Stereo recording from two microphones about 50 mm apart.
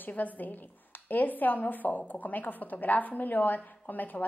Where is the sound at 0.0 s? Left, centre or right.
Left.